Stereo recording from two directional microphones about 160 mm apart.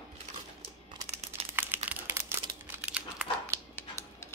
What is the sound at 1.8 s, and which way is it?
Crumpling, 15° right (ahead or behind).